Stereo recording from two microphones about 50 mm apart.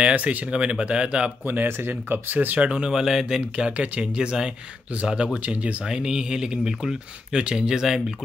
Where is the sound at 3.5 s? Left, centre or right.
Right.